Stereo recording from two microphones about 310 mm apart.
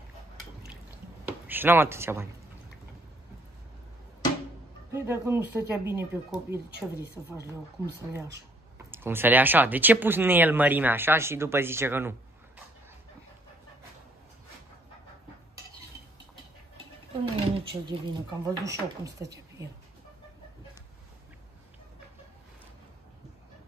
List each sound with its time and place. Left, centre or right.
1.2 s speech: centre
4.9 s speech: centre
16.7 s a sound: centre
18.4 s speech: centre